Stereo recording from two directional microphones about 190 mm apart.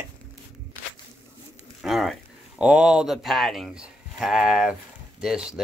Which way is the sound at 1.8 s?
Centre (ahead or behind).